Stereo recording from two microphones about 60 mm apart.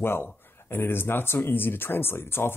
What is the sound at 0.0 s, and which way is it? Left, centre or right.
Speech, left.